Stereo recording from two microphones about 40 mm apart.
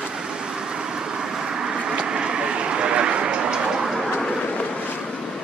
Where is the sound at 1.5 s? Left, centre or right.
Centre.